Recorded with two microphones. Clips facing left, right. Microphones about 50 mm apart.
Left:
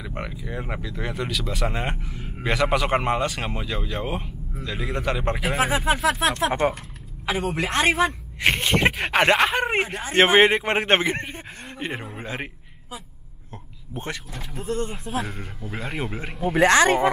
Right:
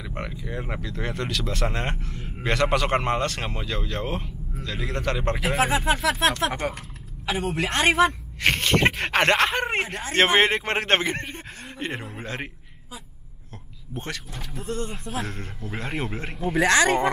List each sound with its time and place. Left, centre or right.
0.0 s speech: centre
6.4 s speech: left
7.2 s speech: centre
8.4 s speech: centre
13.9 s speech: centre
14.6 s speech: left
14.9 s speech: centre